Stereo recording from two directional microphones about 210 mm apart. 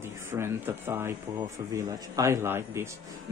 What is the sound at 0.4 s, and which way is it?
Speech, 10° right (ahead or behind).